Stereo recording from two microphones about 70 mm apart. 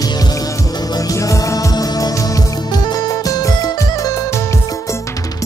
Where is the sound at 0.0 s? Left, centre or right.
Left.